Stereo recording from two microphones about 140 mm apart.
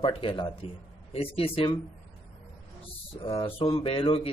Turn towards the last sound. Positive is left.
turn(degrees=40)  # may be behind; listen again after turning